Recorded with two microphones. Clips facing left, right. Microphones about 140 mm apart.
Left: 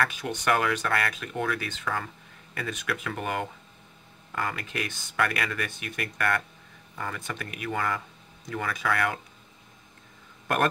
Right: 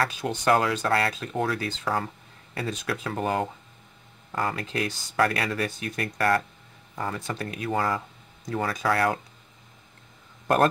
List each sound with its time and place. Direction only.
0.0 s speech: 30° right (ahead or behind)